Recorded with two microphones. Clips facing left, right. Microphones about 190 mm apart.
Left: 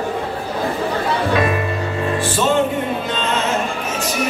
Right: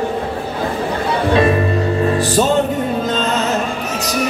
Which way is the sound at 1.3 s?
30° right (ahead or behind).